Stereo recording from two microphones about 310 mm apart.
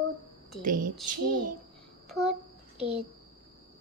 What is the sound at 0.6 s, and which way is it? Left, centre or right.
Speech, right.